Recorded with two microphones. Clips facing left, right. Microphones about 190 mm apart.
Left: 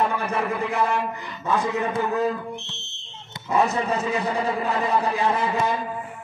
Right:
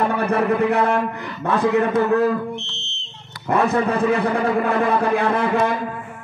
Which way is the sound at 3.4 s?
60° right (ahead or behind).